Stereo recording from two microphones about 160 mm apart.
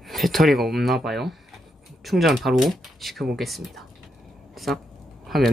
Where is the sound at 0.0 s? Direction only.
Centre (ahead or behind).